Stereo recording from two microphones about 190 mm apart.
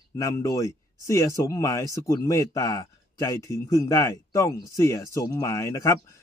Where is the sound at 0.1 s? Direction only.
15° left (ahead or behind).